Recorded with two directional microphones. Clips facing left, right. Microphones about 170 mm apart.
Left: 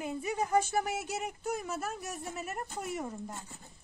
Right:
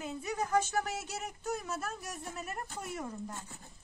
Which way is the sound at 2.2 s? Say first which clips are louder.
Left 1 dB; 5° left (ahead or behind).